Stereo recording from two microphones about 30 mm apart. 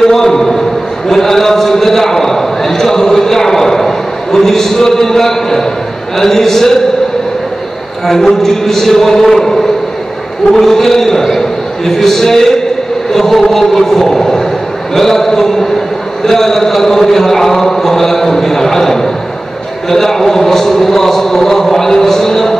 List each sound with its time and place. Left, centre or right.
0.0 s a sound: centre
6.1 s speech: centre
8.1 s a man's voice: centre
13.1 s chant: centre
14.0 s a man's voice: centre